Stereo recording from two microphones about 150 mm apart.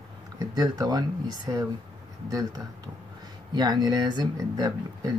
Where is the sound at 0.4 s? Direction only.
25° right (ahead or behind).